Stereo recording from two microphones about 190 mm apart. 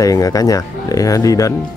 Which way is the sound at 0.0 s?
20° left (ahead or behind).